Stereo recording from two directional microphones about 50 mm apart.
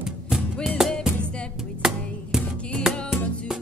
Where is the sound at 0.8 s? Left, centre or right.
Centre.